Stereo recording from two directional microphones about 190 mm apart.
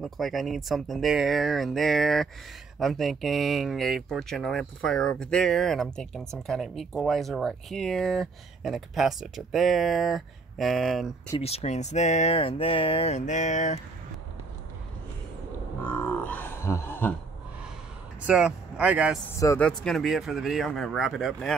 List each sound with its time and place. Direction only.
0.0 s speech: centre (ahead or behind)
11.3 s speech: 35° left (ahead or behind)
15.8 s a sound: 10° left (ahead or behind)
18.2 s speech: 5° right (ahead or behind)
19.4 s speech: 15° left (ahead or behind)
19.8 s speech: centre (ahead or behind)